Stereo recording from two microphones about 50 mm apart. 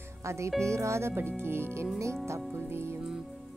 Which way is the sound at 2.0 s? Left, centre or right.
Right.